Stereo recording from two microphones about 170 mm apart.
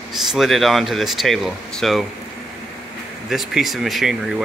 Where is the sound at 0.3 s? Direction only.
Centre (ahead or behind).